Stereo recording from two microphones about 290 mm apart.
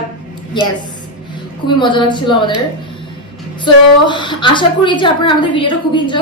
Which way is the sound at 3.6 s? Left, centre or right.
Centre.